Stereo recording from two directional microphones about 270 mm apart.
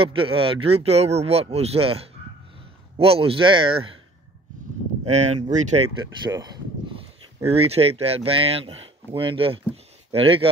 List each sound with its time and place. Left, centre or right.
0.0 s speech: centre
5.0 s speech: right